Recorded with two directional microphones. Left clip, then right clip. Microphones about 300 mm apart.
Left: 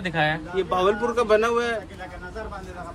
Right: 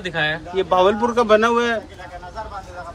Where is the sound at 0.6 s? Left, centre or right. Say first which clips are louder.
Right 6 dB; right.